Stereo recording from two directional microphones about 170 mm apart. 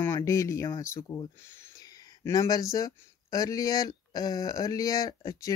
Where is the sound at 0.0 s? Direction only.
15° left (ahead or behind).